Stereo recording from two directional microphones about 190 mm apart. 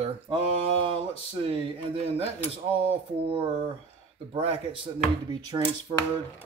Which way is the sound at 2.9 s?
30° right (ahead or behind).